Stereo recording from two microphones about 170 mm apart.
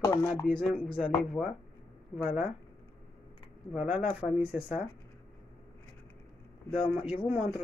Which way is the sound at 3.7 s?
10° right (ahead or behind).